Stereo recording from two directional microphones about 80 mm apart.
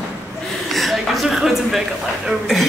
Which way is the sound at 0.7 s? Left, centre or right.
Centre.